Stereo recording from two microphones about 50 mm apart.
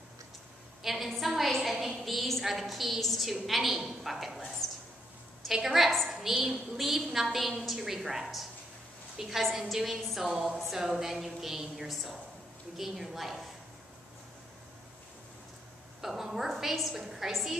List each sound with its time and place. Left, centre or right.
0.8 s a woman's voice: centre
5.5 s a woman's voice: centre
16.0 s a woman's voice: centre